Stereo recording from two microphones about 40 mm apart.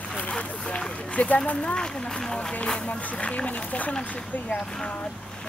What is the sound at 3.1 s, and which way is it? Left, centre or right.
Speech, left.